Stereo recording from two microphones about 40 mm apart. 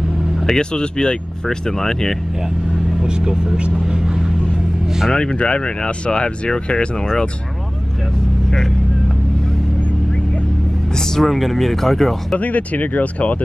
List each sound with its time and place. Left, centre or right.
0.5 s speech: centre
3.0 s speech: centre
3.5 s speech: right
3.8 s vehicle: centre
5.3 s speech: left
8.5 s speech: centre
11.0 s speech: centre
12.4 s speech: left